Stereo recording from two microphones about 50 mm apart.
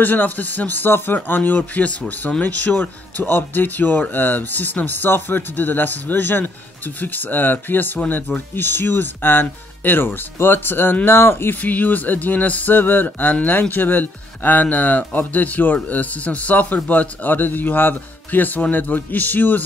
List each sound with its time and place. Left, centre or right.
0.0 s speech: left
3.3 s speech: left
11.6 s speech: left